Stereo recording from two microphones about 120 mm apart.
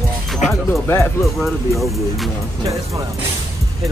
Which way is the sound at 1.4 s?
Centre (ahead or behind).